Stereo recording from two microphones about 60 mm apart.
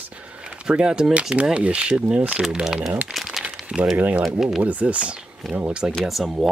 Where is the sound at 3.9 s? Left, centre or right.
Right.